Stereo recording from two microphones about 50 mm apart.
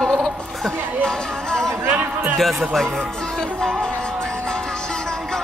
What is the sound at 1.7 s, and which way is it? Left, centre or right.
Speech, right.